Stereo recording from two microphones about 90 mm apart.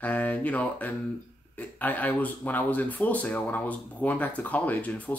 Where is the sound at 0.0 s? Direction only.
15° left (ahead or behind).